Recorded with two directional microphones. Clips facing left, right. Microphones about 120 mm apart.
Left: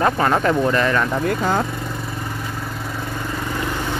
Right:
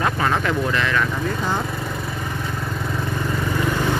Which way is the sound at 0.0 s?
35° left (ahead or behind).